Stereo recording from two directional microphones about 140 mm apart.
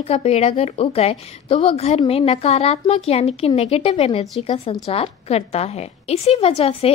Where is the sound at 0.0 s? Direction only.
50° left (ahead or behind).